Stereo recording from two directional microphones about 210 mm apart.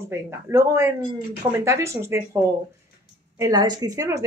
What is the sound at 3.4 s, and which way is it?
Speech, 20° right (ahead or behind).